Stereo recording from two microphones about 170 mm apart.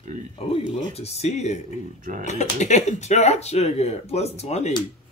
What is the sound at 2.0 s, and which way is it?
Speech, 55° right (ahead or behind).